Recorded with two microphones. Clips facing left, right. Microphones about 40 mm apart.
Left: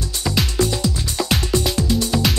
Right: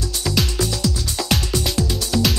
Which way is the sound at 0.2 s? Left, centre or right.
Centre.